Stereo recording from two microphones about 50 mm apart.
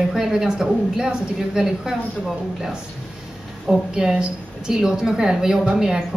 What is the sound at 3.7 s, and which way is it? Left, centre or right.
A woman's voice, centre.